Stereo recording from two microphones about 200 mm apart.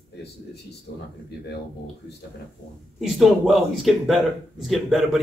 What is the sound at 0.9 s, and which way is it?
Speech, 55° left (ahead or behind).